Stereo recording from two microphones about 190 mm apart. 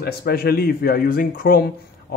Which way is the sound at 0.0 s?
55° left (ahead or behind).